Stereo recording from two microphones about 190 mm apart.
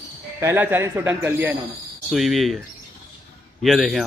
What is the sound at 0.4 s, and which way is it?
Speech, 10° right (ahead or behind).